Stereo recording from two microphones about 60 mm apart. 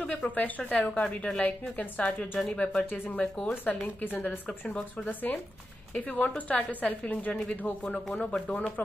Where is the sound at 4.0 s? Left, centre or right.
Left.